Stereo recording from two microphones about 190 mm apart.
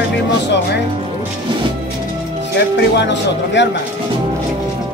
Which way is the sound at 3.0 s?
70° left (ahead or behind).